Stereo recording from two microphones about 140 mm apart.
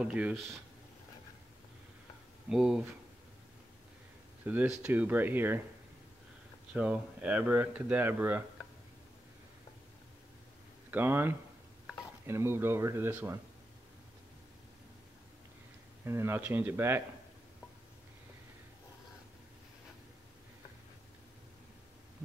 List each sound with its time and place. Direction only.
0.0 s speech: 5° right (ahead or behind)
2.5 s speech: 5° right (ahead or behind)
4.5 s speech: 10° right (ahead or behind)
6.7 s speech: 5° right (ahead or behind)
10.9 s speech: 15° right (ahead or behind)
16.1 s speech: 15° right (ahead or behind)